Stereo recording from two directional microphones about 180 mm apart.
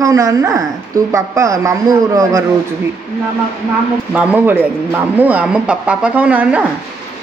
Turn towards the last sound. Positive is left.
turn(degrees=-10)  # may be behind; listen again after turning